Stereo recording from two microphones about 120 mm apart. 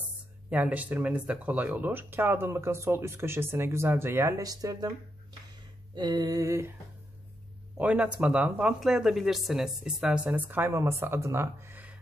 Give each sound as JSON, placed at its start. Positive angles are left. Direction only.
{"t": 0.5, "sound": "speech", "side_deg": -10}
{"t": 5.9, "sound": "a sound", "side_deg": -35}
{"t": 7.7, "sound": "speech", "side_deg": -10}